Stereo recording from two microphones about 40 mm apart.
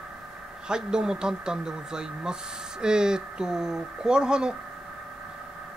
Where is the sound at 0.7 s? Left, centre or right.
Centre.